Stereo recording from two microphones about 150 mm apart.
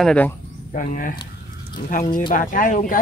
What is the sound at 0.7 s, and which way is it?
Speech, 65° left (ahead or behind).